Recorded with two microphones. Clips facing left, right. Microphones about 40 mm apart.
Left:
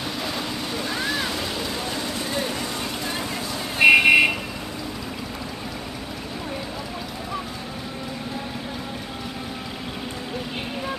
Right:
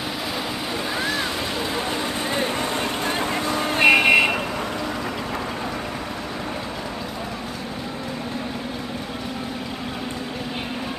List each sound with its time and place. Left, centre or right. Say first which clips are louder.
0.9 s waves: right 1 dB; centre
1.9 s vehicle: right 3 dB; right
3.8 s vehicle: left 1 dB; centre